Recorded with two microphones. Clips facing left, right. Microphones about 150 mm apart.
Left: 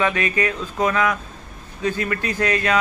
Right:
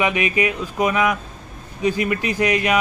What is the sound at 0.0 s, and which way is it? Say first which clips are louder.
Speech: right 1 dB; 15° right (ahead or behind).